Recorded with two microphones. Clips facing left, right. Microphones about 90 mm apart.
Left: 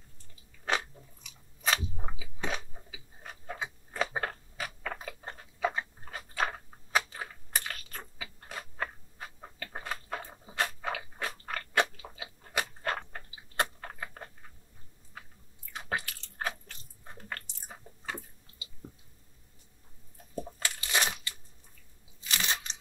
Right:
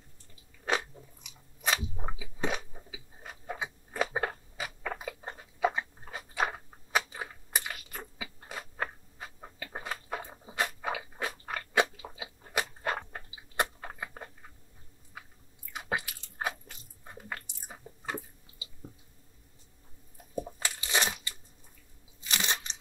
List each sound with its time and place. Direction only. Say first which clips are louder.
1.6 s biting: even; 5° right (ahead or behind)
2.0 s chewing: right 4 dB; 15° right (ahead or behind)
15.7 s biting: right 1 dB; 10° right (ahead or behind)
20.3 s crushing: right 1 dB; 15° right (ahead or behind)
22.3 s crunch: even; 20° right (ahead or behind)